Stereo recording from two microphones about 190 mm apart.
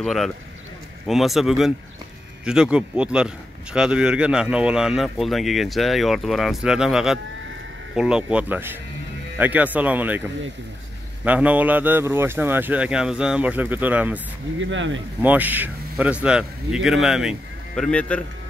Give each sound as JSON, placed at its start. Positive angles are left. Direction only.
{"t": 0.0, "sound": "a man's voice", "side_deg": 0}
{"t": 11.2, "sound": "speech", "side_deg": -10}
{"t": 14.7, "sound": "speech", "side_deg": -80}
{"t": 15.2, "sound": "a man's voice", "side_deg": -10}